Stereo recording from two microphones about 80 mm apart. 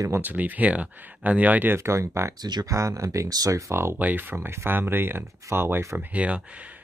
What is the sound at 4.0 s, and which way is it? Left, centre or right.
Speech, right.